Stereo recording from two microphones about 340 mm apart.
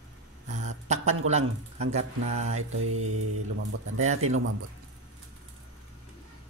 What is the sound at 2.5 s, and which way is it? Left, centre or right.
Mantra, right.